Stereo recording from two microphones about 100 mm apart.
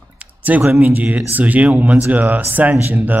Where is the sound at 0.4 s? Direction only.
15° right (ahead or behind).